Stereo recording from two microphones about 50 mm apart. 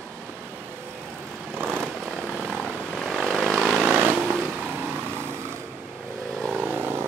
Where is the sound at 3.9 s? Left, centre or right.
Right.